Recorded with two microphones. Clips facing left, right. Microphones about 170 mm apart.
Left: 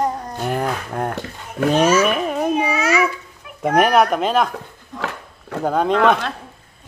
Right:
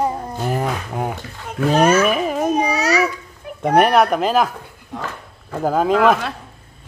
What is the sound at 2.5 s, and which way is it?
Babbling, 40° right (ahead or behind).